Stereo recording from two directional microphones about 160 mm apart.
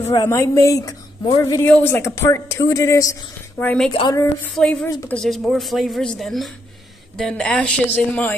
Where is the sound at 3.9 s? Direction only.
35° left (ahead or behind).